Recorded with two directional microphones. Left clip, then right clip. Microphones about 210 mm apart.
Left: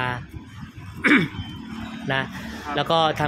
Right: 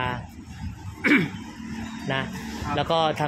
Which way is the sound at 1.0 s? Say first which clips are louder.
Left 3 dB; 15° left (ahead or behind).